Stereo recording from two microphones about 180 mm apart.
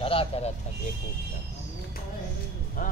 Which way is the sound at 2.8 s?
50° left (ahead or behind).